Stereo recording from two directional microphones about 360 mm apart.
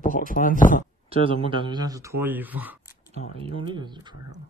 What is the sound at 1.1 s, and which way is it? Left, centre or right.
Speech, centre.